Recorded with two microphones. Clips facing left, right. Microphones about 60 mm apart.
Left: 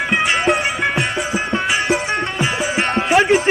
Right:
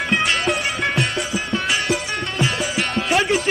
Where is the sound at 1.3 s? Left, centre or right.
Left.